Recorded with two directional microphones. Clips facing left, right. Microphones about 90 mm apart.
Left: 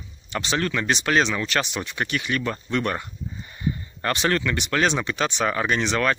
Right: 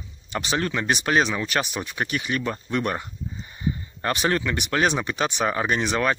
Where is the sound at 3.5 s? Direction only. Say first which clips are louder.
Even; 20° right (ahead or behind).